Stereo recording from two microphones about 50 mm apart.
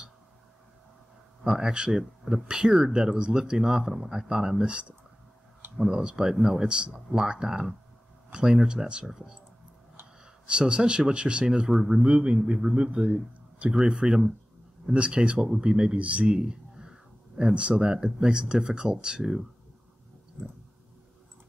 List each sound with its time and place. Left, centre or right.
1.4 s speech: centre
10.4 s speech: centre
11.7 s speech: centre
12.0 s a man's voice: right